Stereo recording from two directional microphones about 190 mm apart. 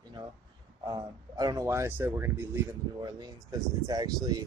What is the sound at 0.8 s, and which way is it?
Speech, 20° right (ahead or behind).